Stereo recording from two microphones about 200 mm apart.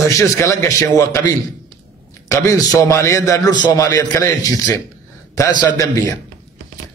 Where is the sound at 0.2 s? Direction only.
15° left (ahead or behind).